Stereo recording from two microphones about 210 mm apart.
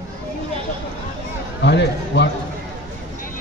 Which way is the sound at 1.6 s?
55° left (ahead or behind).